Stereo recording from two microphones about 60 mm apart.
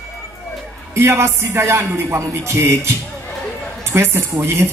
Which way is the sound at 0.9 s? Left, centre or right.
Right.